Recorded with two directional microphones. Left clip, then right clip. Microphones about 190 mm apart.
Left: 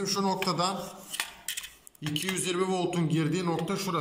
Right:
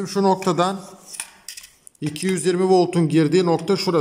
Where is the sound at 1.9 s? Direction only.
50° right (ahead or behind).